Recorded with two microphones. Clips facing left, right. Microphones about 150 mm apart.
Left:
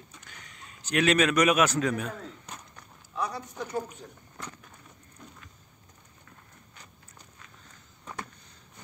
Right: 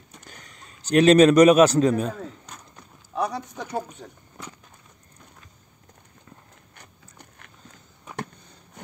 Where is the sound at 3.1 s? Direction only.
75° right (ahead or behind).